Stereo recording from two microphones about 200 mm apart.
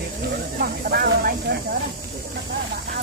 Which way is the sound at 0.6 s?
50° right (ahead or behind).